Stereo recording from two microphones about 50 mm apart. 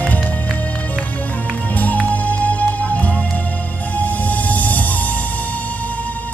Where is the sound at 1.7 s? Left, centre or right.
Left.